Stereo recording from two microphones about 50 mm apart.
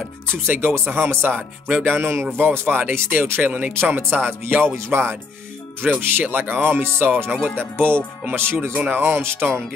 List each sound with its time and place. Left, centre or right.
0.3 s speech: right
3.8 s speech: right
4.7 s speech: right
5.8 s speech: right